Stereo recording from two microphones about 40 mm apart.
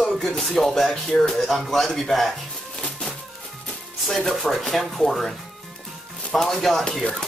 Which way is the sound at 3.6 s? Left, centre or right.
Centre.